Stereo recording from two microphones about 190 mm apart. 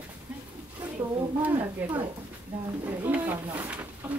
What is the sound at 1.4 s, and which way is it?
Speech, 10° right (ahead or behind).